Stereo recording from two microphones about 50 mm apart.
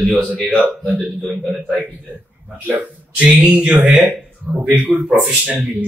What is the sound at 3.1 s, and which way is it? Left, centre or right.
Speech, right.